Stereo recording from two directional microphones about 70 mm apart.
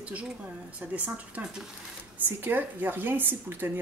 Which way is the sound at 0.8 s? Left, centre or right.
Right.